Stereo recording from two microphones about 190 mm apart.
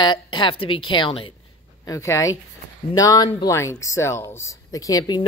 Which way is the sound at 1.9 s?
15° left (ahead or behind).